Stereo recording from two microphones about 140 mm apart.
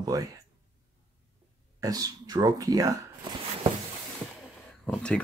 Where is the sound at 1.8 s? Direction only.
25° right (ahead or behind).